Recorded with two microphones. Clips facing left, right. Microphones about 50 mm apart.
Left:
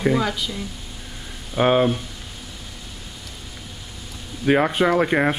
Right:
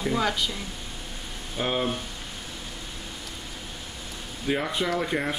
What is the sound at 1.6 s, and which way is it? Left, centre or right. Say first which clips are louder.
Speech: left 10 dB; left.